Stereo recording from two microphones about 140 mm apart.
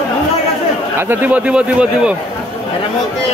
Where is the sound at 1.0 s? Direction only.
15° right (ahead or behind).